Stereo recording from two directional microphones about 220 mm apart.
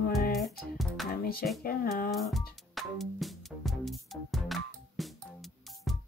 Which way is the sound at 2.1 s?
Centre (ahead or behind).